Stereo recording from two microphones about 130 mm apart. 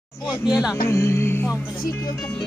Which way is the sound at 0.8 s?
20° left (ahead or behind).